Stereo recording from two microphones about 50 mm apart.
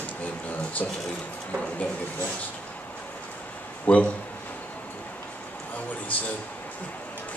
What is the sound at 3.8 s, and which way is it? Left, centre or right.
Speech, left.